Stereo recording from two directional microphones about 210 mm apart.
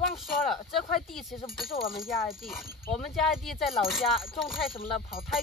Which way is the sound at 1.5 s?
Centre (ahead or behind).